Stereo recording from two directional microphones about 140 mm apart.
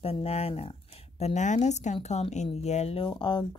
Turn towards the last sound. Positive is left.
turn(degrees=35)  # may be behind; listen again after turning